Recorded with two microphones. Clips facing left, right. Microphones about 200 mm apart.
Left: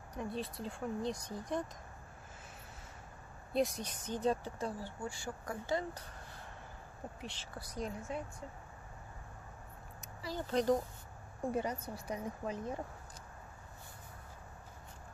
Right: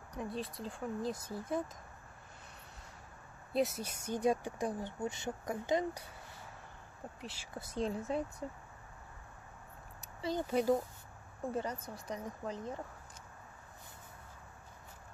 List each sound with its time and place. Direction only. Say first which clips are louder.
0.2 s speech: even; centre (ahead or behind)
3.5 s speech: even; 5° right (ahead or behind)
7.2 s speech: left 1 dB; 5° right (ahead or behind)
7.5 s a woman's voice: right 6 dB; 25° right (ahead or behind)
10.4 s speech: even; 5° right (ahead or behind)
11.5 s a woman's voice: left 1 dB; 10° left (ahead or behind)